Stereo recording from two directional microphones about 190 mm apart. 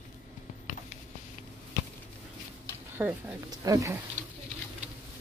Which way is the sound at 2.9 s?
15° right (ahead or behind).